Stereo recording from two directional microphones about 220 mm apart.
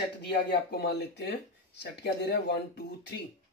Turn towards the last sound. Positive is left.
turn(degrees=50)  # may be behind; listen again after turning